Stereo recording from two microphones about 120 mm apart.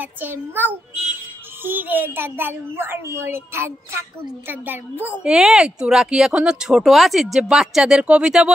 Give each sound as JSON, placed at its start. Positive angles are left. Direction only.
{"t": 0.0, "sound": "a child's voice", "side_deg": -15}